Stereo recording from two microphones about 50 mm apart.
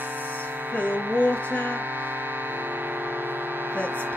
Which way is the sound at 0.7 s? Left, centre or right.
Right.